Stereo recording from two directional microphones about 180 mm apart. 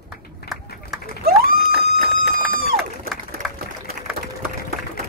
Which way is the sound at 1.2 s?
60° right (ahead or behind).